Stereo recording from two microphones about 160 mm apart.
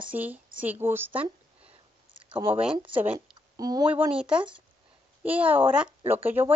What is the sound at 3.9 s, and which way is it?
Speech, 5° right (ahead or behind).